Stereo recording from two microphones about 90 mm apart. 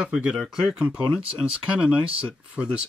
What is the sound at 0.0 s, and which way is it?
Speech, 10° right (ahead or behind).